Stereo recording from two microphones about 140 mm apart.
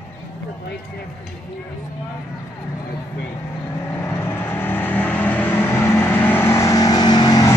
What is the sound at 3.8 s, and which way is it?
Vehicle, 20° left (ahead or behind).